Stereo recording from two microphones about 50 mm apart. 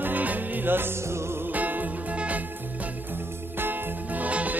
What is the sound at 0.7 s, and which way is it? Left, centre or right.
Music, right.